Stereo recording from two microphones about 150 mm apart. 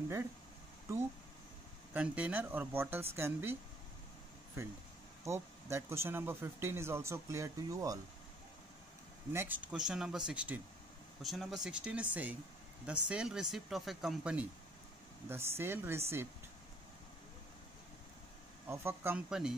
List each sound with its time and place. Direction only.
2.0 s speech: 10° right (ahead or behind)
5.2 s speech: 20° right (ahead or behind)
9.3 s speech: 15° right (ahead or behind)
9.7 s speech: 5° right (ahead or behind)
15.2 s speech: 15° right (ahead or behind)
18.7 s speech: 15° right (ahead or behind)